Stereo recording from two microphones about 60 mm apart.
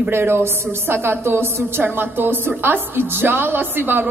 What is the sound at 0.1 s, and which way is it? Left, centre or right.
A woman's voice, right.